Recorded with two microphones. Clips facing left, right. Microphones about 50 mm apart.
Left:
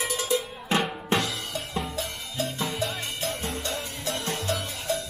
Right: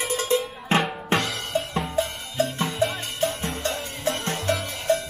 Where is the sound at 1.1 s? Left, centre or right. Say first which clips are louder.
Right 2 dB; right.